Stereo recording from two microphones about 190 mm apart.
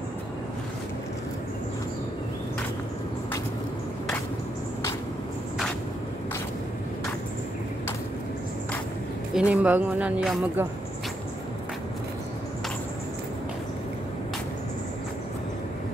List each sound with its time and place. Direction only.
9.3 s speech: 5° right (ahead or behind)